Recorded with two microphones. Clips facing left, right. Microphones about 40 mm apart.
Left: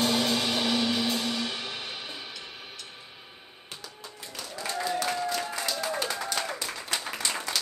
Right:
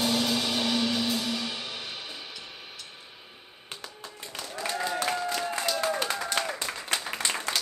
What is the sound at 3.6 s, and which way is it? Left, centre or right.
Music, right.